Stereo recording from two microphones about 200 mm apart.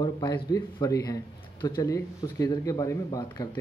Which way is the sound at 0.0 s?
20° left (ahead or behind).